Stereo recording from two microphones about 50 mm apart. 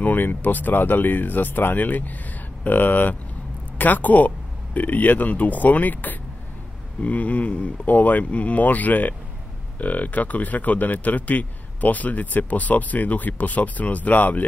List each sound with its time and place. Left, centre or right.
0.0 s speech: left